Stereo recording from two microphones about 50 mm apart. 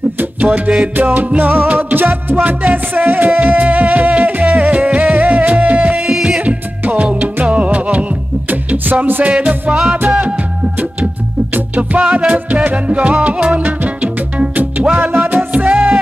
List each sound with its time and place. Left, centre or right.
0.2 s music: right
0.9 s music: right
6.0 s music: centre
6.4 s music: right
9.0 s music: right
9.3 s music: right
11.5 s music: right
12.0 s music: right
15.0 s music: right
15.5 s music: right